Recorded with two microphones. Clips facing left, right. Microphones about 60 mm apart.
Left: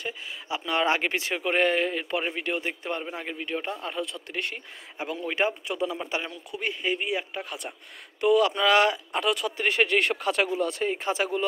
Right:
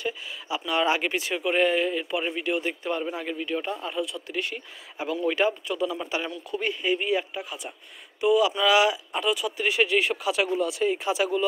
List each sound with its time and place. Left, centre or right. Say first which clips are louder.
0.0 s a man's voice: right 3 dB; left
3.8 s speech: right 2 dB; left
5.3 s a man's voice: left 1 dB; left
7.3 s speech: even; left